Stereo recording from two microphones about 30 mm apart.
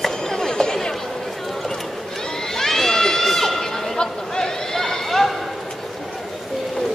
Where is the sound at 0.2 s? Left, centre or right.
Centre.